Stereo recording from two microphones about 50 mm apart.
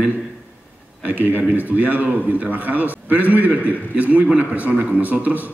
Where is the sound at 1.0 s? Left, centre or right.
Right.